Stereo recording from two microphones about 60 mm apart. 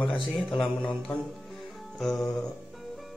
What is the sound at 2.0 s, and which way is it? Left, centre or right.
Music, centre.